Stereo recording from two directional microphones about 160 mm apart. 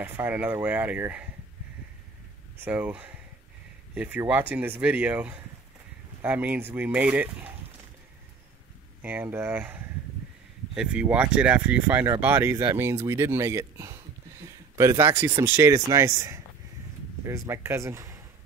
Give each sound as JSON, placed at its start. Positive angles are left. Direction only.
{"t": 0.0, "sound": "speech", "side_deg": -10}
{"t": 2.6, "sound": "speech", "side_deg": -10}
{"t": 9.0, "sound": "speech", "side_deg": -15}
{"t": 17.5, "sound": "speech", "side_deg": -15}